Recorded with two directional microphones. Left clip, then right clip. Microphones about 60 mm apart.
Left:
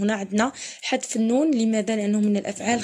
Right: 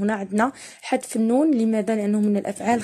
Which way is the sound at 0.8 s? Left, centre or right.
Right.